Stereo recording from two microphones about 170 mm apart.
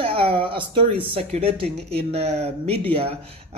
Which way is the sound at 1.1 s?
35° right (ahead or behind).